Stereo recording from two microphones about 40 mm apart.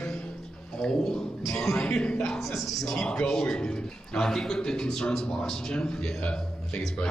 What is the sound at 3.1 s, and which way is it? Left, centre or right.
A man's voice, centre.